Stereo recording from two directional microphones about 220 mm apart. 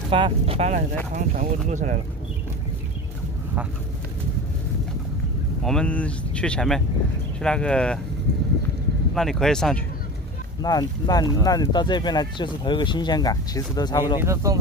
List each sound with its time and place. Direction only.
0.1 s speech: 25° right (ahead or behind)
5.6 s speech: 5° left (ahead or behind)
9.1 s speech: centre (ahead or behind)
10.6 s speech: 15° left (ahead or behind)
14.2 s speech: 15° right (ahead or behind)